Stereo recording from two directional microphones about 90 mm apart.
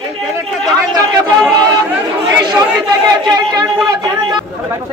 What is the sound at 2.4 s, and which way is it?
Speech, 50° right (ahead or behind).